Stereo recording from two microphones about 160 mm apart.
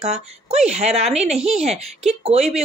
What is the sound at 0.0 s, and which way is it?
Speech, 40° right (ahead or behind).